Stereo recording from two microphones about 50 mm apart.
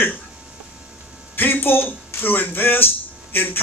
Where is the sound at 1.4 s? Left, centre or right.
Left.